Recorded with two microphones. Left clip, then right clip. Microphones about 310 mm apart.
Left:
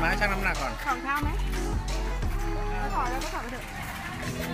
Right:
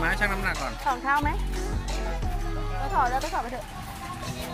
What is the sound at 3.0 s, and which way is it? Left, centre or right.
Music, right.